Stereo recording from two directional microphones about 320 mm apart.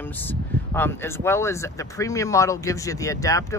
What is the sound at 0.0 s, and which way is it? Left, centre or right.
Speech, centre.